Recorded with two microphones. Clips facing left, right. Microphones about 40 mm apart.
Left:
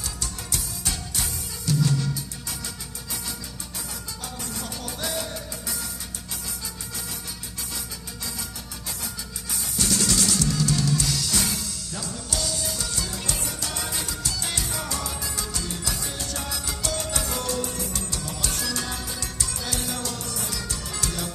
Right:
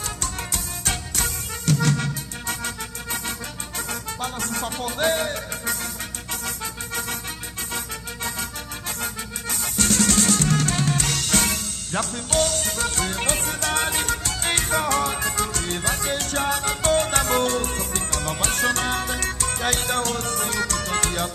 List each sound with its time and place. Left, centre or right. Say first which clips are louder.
0.0 s music: right 5 dB; right
9.0 s drum kit: right 6 dB; right